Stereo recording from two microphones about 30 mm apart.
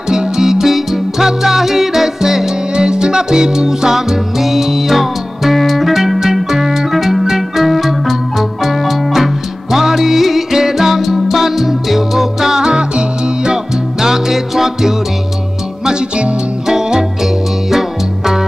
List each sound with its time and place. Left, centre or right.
0.1 s music: right
2.7 s music: right
6.9 s music: centre; by 13.6 s right
14.0 s music: centre
16.6 s music: centre